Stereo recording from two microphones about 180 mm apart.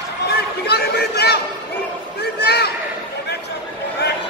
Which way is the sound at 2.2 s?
65° left (ahead or behind).